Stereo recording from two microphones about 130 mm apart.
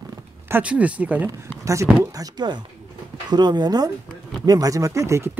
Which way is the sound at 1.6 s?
25° right (ahead or behind).